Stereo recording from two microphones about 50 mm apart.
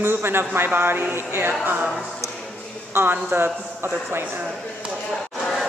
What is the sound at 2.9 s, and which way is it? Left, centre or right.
Speech, right.